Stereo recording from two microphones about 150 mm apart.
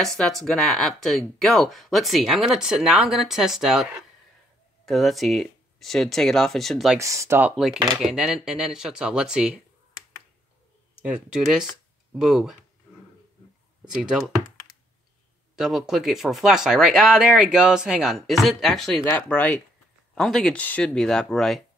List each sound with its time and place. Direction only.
0.0 s speech: centre (ahead or behind)
7.0 s speech: 20° right (ahead or behind)
7.5 s speech: centre (ahead or behind)
11.1 s speech: 5° right (ahead or behind)
11.7 s a sound: 5° right (ahead or behind)
13.8 s computer keyboard: 5° right (ahead or behind)
15.5 s speech: 5° right (ahead or behind)